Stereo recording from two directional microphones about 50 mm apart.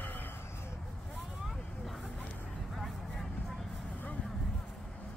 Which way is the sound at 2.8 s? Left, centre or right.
Centre.